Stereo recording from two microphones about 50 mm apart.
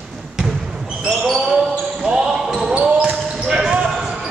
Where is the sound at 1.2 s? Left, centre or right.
Centre; by 3.4 s right.